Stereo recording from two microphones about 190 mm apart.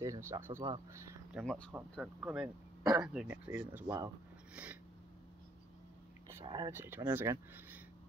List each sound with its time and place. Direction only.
0.0 s speech: 15° right (ahead or behind)
1.3 s speech: 5° left (ahead or behind)
1.7 s speech: 10° right (ahead or behind)
6.4 s speech: 25° right (ahead or behind)
6.8 s speech: 10° right (ahead or behind)